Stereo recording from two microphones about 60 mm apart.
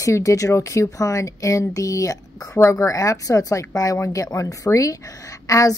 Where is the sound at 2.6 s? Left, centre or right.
Left.